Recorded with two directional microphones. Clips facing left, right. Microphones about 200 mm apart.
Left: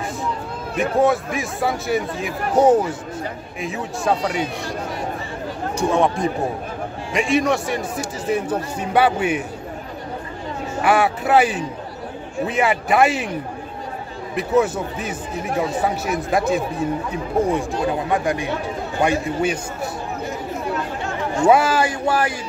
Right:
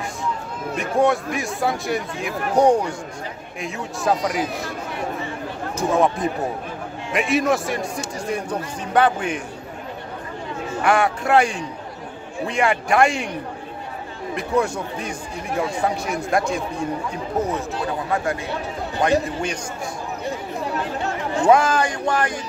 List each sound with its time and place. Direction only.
0.7 s a man's voice: centre (ahead or behind)
5.8 s a man's voice: centre (ahead or behind)
10.8 s a man's voice: 5° left (ahead or behind)
14.3 s a man's voice: 5° left (ahead or behind)
18.1 s a man's voice: 15° left (ahead or behind)
21.5 s a man's voice: 5° left (ahead or behind)